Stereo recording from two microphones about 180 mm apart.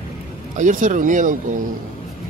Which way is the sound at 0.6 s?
45° right (ahead or behind).